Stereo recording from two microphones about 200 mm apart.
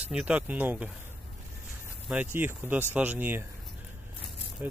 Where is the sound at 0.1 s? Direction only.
5° right (ahead or behind).